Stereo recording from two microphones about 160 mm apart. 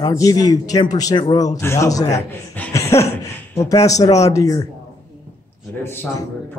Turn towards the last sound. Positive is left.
turn(degrees=15)  # may be behind; listen again after turning